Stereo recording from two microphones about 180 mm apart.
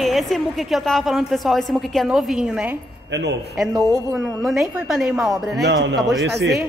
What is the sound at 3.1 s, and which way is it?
Speech, 75° right (ahead or behind).